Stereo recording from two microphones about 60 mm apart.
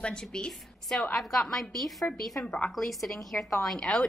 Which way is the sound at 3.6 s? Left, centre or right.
Centre.